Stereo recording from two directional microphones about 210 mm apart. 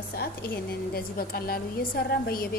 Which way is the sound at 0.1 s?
45° left (ahead or behind).